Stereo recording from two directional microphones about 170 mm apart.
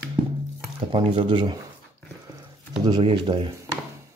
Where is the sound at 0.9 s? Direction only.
30° right (ahead or behind).